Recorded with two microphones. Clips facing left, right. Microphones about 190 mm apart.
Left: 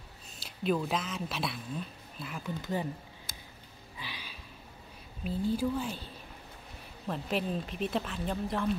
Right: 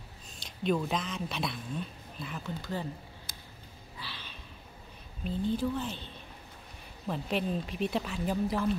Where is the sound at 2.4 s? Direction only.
15° left (ahead or behind).